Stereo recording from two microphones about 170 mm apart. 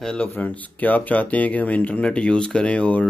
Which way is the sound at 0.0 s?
5° left (ahead or behind).